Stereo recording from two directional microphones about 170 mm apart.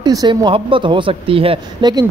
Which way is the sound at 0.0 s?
25° right (ahead or behind).